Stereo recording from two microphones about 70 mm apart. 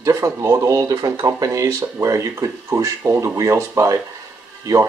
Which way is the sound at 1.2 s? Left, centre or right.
Right.